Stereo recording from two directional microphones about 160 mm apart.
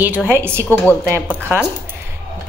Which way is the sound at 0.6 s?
10° left (ahead or behind).